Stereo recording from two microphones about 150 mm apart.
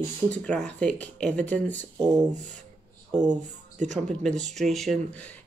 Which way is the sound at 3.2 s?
55° right (ahead or behind).